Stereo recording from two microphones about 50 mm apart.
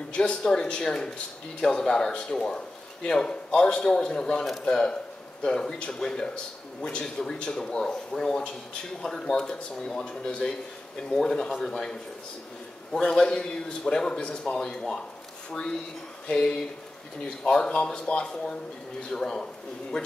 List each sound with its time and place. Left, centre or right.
0.1 s a man's voice: centre
16.3 s a man's voice: centre